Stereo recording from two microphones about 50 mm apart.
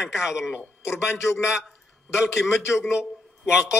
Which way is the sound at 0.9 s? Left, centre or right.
Left.